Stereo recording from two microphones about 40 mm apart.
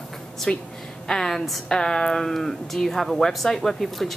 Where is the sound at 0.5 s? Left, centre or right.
Centre.